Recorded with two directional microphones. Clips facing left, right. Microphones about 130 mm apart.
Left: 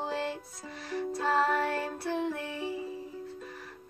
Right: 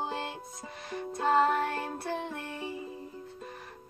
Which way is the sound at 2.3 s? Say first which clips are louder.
Left 3 dB; centre (ahead or behind).